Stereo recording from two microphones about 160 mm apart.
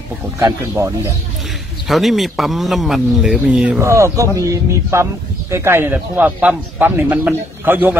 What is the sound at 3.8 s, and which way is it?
A man's voice, 20° right (ahead or behind).